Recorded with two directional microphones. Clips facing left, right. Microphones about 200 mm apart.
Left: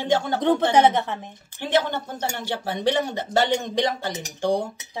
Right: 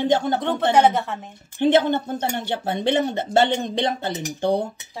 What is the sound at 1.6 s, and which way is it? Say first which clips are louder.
Speech: right 6 dB; 20° right (ahead or behind).